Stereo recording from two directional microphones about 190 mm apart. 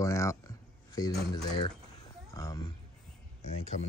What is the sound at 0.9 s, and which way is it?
Speech, 20° left (ahead or behind).